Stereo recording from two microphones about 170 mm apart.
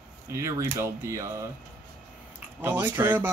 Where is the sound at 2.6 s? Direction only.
15° right (ahead or behind).